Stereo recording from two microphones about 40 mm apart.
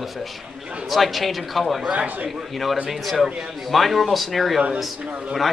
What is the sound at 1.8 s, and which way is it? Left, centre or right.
Speech, right.